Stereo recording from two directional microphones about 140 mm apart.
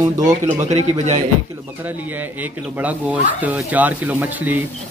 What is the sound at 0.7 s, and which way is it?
Speech, 50° right (ahead or behind).